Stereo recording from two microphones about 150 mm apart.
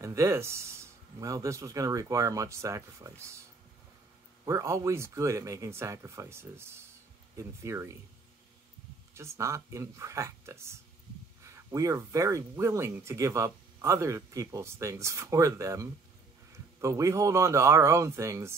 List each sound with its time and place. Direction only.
0.0 s speech: 20° right (ahead or behind)
4.5 s speech: 20° right (ahead or behind)
9.1 s speech: 20° right (ahead or behind)